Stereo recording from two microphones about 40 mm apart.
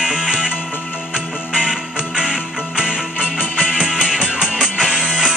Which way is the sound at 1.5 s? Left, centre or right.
Centre.